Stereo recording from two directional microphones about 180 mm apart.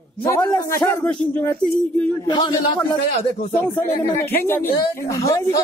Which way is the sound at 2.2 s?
25° left (ahead or behind).